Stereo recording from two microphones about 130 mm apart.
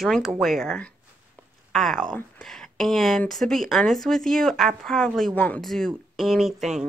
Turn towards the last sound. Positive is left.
turn(degrees=-5)  # may be behind; listen again after turning